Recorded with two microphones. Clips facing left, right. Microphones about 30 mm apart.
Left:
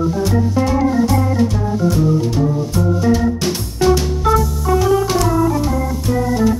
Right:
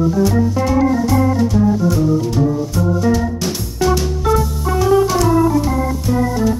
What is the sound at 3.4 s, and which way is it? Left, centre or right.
Music, centre.